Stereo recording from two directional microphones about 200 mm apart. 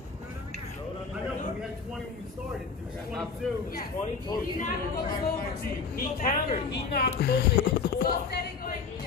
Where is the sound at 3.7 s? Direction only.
45° left (ahead or behind).